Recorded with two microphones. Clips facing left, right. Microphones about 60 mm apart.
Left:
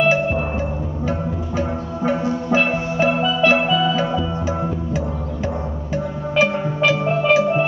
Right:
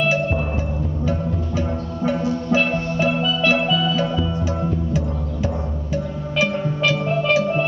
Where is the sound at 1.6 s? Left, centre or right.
Centre.